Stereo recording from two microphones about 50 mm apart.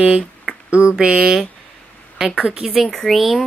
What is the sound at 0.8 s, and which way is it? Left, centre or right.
Speech, right.